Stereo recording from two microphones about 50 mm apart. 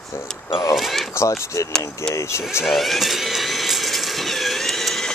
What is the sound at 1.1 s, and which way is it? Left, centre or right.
Speech, left.